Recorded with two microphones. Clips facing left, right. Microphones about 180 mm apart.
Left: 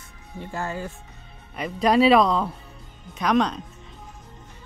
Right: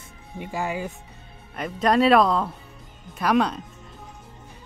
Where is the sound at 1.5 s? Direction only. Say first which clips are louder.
Left 1 dB; centre (ahead or behind).